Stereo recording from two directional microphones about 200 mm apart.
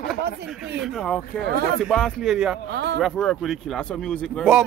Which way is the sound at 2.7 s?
55° right (ahead or behind).